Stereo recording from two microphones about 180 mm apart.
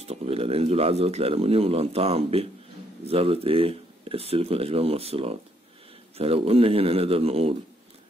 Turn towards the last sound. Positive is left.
turn(degrees=-35)  # may be behind; listen again after turning